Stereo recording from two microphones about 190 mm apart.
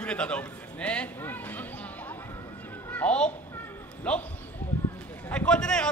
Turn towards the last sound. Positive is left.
turn(degrees=5)  # may be behind; listen again after turning